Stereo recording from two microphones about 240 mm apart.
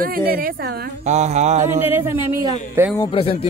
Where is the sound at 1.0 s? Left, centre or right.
Right.